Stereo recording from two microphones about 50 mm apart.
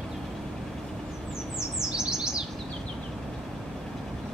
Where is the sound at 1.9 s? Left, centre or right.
Centre.